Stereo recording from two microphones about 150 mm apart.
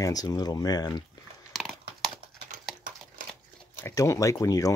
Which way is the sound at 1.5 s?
Centre (ahead or behind).